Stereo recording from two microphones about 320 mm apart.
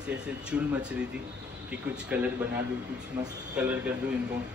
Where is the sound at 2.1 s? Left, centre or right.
Centre.